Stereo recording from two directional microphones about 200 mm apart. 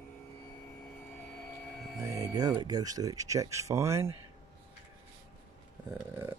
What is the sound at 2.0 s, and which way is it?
Speech, 15° right (ahead or behind).